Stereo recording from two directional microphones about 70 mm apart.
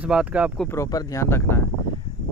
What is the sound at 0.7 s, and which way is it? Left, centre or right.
Speech, left.